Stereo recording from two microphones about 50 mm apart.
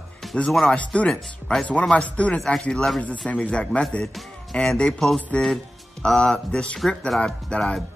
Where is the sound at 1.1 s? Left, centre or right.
Centre.